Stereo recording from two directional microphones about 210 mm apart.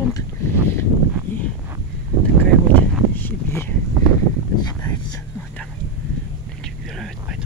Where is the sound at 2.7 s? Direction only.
10° left (ahead or behind).